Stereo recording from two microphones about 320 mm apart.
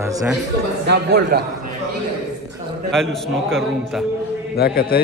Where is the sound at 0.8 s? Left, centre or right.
Right.